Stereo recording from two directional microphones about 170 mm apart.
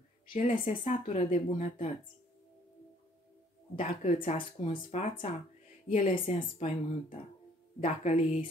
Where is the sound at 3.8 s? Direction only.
50° left (ahead or behind).